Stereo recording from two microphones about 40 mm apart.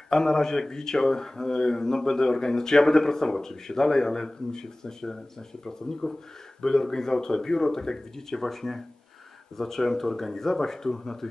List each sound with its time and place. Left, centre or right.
0.1 s speech: centre